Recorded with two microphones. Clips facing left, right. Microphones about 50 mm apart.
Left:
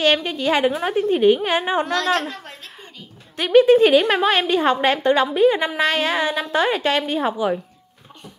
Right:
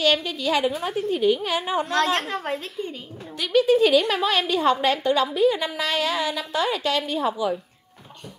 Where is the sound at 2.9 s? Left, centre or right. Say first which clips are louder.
Right 4 dB; right.